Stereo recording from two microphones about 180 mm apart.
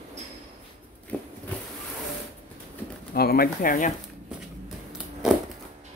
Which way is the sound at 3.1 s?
60° left (ahead or behind).